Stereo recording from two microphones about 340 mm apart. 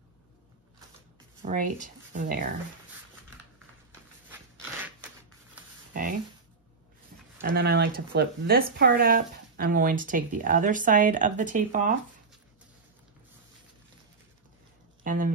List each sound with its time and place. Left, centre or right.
1.4 s speech: right
7.4 s speech: right
15.0 s speech: right